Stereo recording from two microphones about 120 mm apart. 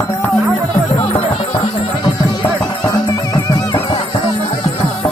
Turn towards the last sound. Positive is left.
turn(degrees=30)  # may be behind; listen again after turning